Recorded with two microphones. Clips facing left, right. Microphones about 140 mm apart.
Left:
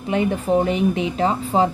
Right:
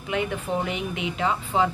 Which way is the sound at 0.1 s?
35° left (ahead or behind).